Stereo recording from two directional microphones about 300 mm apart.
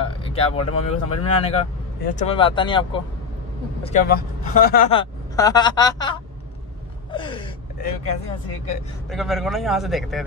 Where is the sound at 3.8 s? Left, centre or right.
Left.